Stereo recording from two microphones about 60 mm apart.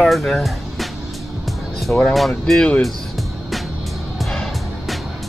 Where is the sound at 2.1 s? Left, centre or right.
Centre.